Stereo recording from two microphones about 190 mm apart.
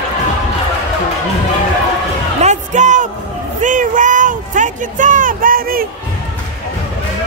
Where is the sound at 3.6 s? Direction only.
40° right (ahead or behind).